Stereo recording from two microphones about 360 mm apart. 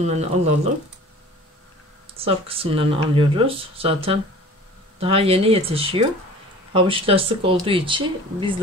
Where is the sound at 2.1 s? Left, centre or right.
Centre.